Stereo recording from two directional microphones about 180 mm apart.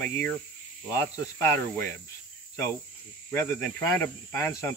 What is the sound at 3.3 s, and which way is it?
Speech, 10° left (ahead or behind).